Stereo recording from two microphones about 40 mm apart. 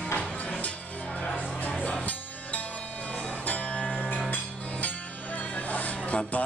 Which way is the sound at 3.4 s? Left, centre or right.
Left.